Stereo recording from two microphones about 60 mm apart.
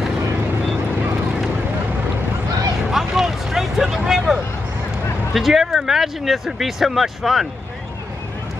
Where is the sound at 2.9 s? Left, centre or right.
Centre.